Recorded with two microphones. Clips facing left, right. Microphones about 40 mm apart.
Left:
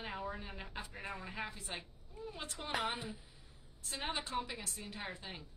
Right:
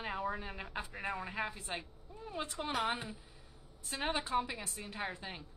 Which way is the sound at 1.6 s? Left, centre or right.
Right.